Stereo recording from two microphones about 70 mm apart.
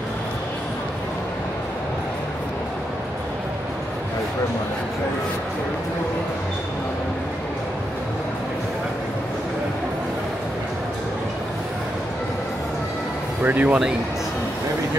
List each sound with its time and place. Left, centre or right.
13.4 s speech: right